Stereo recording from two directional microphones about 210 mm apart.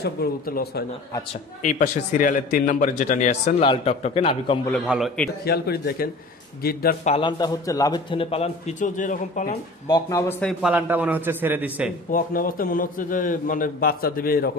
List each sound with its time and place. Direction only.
0.0 s speech: 45° left (ahead or behind)
1.3 s a man's voice: 35° left (ahead or behind)
4.8 s a man's voice: centre (ahead or behind)
5.4 s speech: 50° left (ahead or behind)
7.1 s a man's voice: 25° left (ahead or behind)
9.8 s speech: 20° left (ahead or behind)
10.4 s a man's voice: 5° right (ahead or behind)
12.1 s a man's voice: 40° left (ahead or behind)